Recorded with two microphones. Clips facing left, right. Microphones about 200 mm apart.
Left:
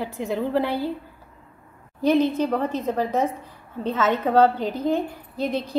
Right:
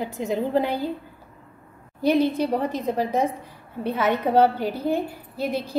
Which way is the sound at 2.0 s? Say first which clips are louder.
Left 1 dB; 10° right (ahead or behind).